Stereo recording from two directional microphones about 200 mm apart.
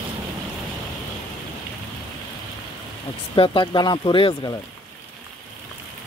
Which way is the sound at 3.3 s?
25° left (ahead or behind).